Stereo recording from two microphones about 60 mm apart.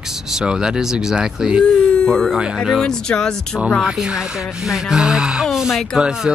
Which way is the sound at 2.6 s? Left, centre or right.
Centre.